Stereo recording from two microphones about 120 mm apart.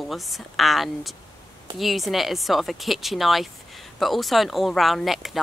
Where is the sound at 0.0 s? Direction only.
Centre (ahead or behind).